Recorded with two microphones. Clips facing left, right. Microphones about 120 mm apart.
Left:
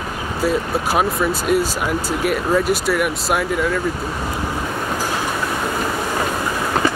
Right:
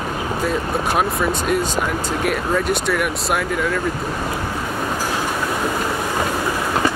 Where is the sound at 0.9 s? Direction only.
5° left (ahead or behind).